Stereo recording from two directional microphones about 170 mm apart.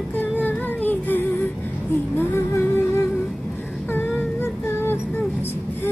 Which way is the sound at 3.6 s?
5° left (ahead or behind).